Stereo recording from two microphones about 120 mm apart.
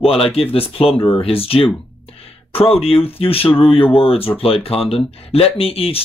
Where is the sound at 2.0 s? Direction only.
55° left (ahead or behind).